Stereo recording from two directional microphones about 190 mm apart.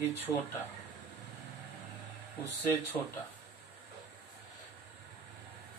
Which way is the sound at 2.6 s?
10° left (ahead or behind).